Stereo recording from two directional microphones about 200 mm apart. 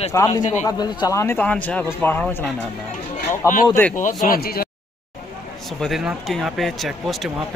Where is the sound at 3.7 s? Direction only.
10° left (ahead or behind).